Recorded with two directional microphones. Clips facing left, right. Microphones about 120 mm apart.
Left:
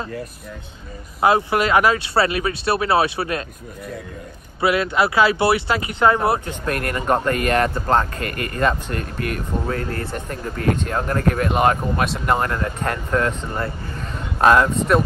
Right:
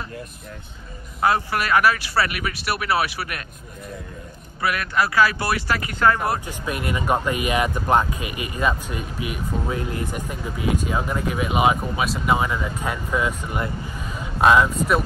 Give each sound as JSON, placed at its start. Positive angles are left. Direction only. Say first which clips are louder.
{"t": 1.2, "sound": "speech", "louder": "left 4 dB", "side_deg": 20}
{"t": 4.6, "sound": "speech", "louder": "left 4 dB", "side_deg": 20}
{"t": 6.4, "sound": "speech", "louder": "left 3 dB", "side_deg": -5}